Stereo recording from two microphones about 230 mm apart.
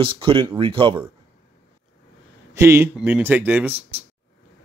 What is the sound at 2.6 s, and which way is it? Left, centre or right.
A man's voice, centre.